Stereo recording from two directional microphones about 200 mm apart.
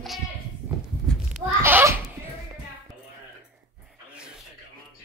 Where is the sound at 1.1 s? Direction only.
5° left (ahead or behind).